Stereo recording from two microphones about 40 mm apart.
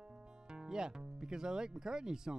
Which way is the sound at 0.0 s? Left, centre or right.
Centre.